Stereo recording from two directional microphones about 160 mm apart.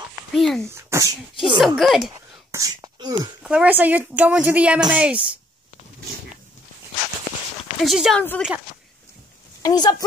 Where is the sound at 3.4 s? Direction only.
10° right (ahead or behind).